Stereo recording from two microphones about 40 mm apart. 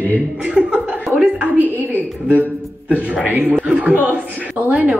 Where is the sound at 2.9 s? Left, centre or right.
Right.